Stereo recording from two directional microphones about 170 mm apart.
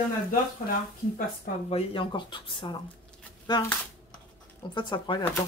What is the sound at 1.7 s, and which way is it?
Speech, 30° left (ahead or behind).